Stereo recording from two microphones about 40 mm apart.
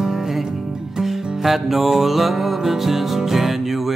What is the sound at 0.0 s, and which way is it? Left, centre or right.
Music, centre.